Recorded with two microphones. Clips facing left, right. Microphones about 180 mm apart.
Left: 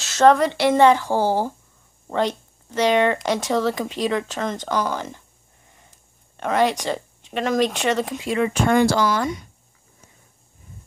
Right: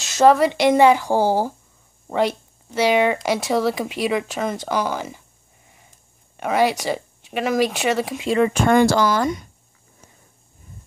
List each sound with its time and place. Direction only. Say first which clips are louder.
0.0 s speech: right 1 dB; 10° right (ahead or behind)
6.3 s speech: right 1 dB; 10° right (ahead or behind)
8.6 s speech: right 1 dB; 50° right (ahead or behind)